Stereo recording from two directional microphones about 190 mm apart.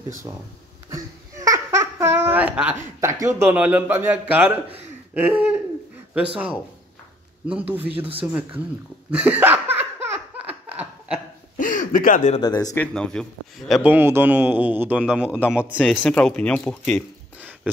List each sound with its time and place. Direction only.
0.8 s a man's voice: 15° right (ahead or behind)
9.1 s laughter: 10° right (ahead or behind)
10.7 s a sound: 5° right (ahead or behind)
11.5 s a sound: 45° left (ahead or behind)
12.4 s speech: 20° left (ahead or behind)
12.8 s a man's voice: 5° left (ahead or behind)
15.8 s speech: 5° left (ahead or behind)